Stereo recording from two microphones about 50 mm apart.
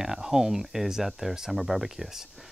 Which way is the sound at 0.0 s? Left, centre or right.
Centre.